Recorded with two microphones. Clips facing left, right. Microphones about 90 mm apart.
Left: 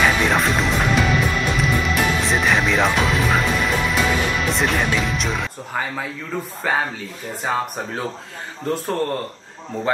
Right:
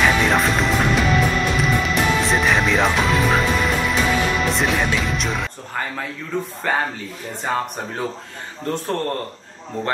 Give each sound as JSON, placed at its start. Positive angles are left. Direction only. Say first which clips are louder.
{"t": 0.0, "sound": "music", "louder": "right 1 dB", "side_deg": 0}
{"t": 6.6, "sound": "speech", "louder": "left 1 dB", "side_deg": 5}